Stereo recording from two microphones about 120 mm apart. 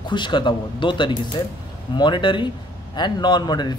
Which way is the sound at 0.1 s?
40° left (ahead or behind).